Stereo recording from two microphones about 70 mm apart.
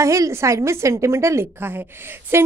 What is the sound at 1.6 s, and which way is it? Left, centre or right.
Speech, right.